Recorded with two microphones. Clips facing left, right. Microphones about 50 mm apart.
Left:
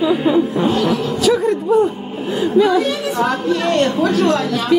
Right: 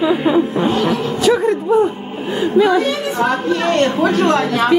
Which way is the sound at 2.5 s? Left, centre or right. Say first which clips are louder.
Right 1 dB; centre.